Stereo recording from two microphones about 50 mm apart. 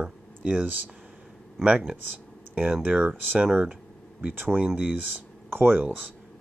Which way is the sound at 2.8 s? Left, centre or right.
Right.